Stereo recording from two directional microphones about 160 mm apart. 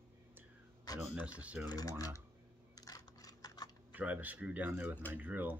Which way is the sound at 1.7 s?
25° left (ahead or behind).